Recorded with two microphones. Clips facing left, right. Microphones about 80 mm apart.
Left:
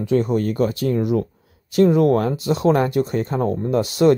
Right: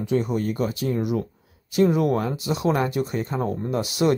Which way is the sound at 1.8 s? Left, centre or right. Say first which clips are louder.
Left 6 dB; left.